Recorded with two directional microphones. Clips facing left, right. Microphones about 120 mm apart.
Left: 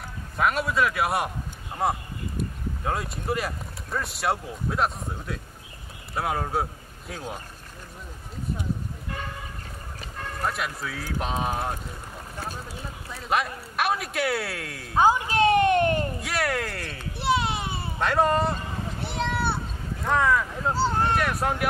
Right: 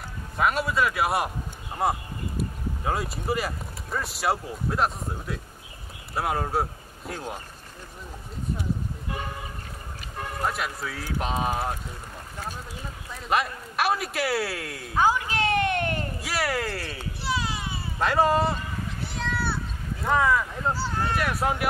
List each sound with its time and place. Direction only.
0.4 s a man's voice: centre (ahead or behind)
10.2 s a man's voice: 5° right (ahead or behind)
13.1 s a man's voice: centre (ahead or behind)
15.0 s speech: 25° left (ahead or behind)
15.2 s a sound: 25° left (ahead or behind)
16.2 s a man's voice: centre (ahead or behind)
17.2 s a sound: 60° left (ahead or behind)
17.9 s a man's voice: centre (ahead or behind)
19.3 s a sound: 20° left (ahead or behind)
20.0 s speech: centre (ahead or behind)
20.7 s speech: 25° left (ahead or behind)
21.2 s a man's voice: centre (ahead or behind)